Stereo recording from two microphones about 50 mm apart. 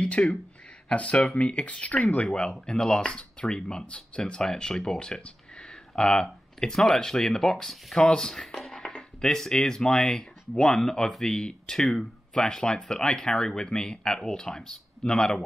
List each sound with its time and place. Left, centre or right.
0.0 s speech: left